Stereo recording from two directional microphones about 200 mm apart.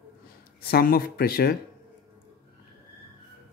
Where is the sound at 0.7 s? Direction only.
45° left (ahead or behind).